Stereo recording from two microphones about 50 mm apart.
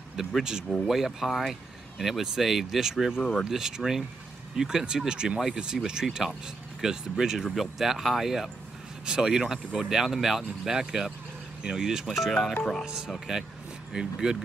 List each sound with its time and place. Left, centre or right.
0.4 s speech: centre
3.2 s speech: centre
3.4 s speech: centre
12.1 s speech: centre
12.8 s speech: centre